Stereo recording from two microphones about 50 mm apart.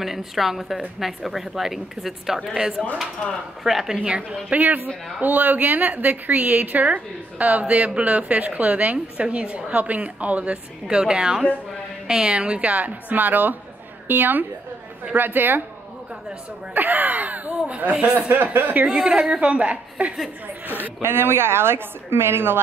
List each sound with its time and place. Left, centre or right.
0.0 s a woman's voice: centre
3.9 s a woman's voice: centre
4.6 s a woman's voice: right
16.7 s speech: right
18.3 s a woman's voice: right
18.9 s a woman's voice: centre
21.0 s a woman's voice: right